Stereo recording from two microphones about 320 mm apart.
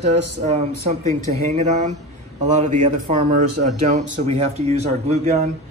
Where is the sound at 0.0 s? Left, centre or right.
Right.